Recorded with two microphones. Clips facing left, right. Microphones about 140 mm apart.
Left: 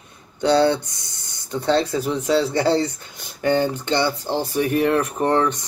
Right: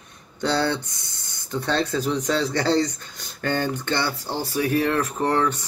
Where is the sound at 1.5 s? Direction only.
15° left (ahead or behind).